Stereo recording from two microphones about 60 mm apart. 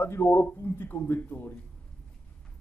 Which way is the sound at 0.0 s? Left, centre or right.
Left.